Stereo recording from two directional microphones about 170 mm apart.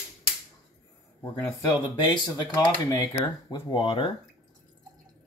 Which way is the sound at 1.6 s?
25° left (ahead or behind).